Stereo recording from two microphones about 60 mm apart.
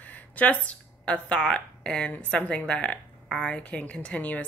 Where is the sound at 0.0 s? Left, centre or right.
Left.